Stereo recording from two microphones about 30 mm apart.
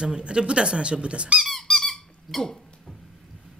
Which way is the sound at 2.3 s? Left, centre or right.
Centre.